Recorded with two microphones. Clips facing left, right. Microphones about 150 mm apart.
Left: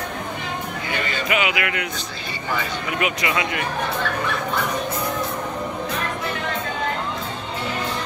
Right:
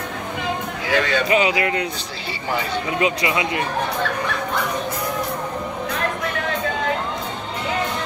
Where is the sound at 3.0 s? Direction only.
25° right (ahead or behind).